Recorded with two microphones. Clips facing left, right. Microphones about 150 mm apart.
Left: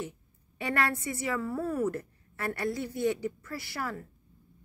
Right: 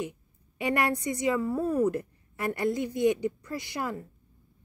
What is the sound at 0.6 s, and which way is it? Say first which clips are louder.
A woman's voice: right 3 dB; 15° right (ahead or behind).